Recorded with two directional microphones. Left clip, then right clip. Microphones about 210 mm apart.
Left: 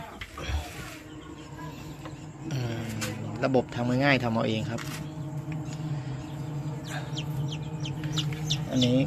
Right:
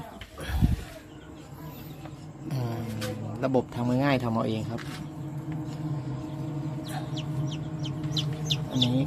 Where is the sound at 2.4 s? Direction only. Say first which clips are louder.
Even; 20° right (ahead or behind).